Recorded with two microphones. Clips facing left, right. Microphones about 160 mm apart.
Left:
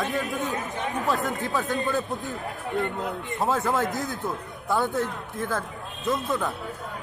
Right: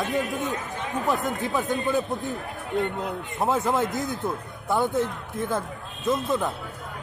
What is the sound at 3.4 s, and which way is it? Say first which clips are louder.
A man's voice: right 1 dB; 20° right (ahead or behind).